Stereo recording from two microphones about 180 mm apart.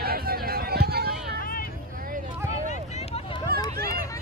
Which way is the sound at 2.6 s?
40° left (ahead or behind).